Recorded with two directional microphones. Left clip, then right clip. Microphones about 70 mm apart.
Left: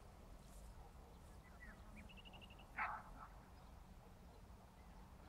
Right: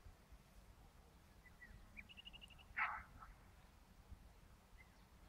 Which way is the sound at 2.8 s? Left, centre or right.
Centre.